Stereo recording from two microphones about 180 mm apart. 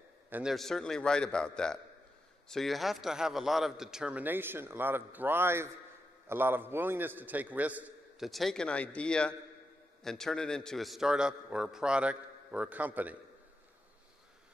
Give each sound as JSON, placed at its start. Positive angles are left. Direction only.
{"t": 0.3, "sound": "a man's voice", "side_deg": -5}